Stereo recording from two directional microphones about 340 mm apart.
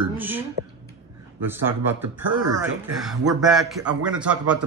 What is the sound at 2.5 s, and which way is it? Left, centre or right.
A man's voice, centre.